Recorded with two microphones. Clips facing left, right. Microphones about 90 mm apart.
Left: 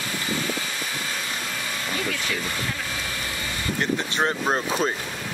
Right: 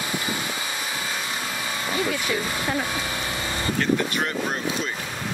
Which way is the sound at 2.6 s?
30° right (ahead or behind).